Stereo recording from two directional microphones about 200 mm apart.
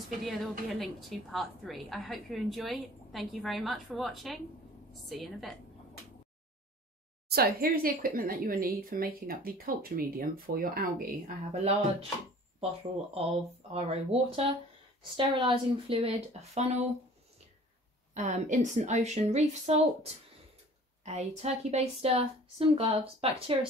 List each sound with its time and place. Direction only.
0.2 s a woman's voice: centre (ahead or behind)
7.2 s speech: 50° right (ahead or behind)
11.4 s a woman's voice: 35° right (ahead or behind)
13.7 s a woman's voice: 30° right (ahead or behind)
18.1 s a woman's voice: 35° right (ahead or behind)